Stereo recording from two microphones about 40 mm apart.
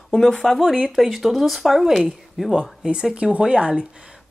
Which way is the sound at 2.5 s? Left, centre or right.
Right.